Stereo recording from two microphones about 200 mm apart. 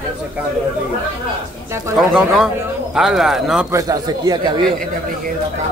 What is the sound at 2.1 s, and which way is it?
Speech, centre (ahead or behind).